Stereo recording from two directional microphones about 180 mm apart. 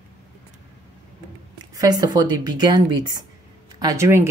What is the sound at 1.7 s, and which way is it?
Speech, 20° right (ahead or behind).